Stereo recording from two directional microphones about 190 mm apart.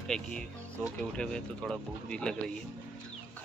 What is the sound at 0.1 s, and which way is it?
Speech, 5° left (ahead or behind).